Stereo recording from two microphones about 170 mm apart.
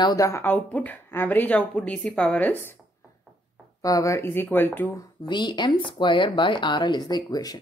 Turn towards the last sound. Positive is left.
turn(degrees=20)  # may be behind; listen again after turning